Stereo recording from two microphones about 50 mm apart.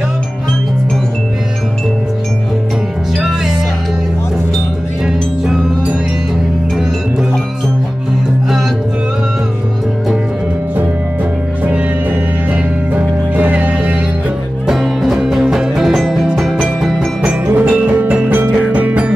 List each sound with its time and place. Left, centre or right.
3.2 s music: centre
5.0 s music: centre
11.6 s music: right
13.3 s music: right
14.7 s music: centre
17.5 s music: right